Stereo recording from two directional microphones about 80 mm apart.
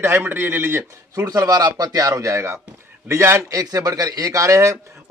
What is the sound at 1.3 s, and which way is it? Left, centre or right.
A man's voice, right.